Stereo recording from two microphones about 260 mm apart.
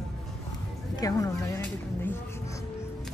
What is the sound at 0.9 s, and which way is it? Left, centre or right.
Speech, centre.